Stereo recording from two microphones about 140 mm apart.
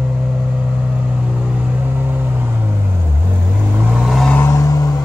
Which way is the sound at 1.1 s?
10° right (ahead or behind).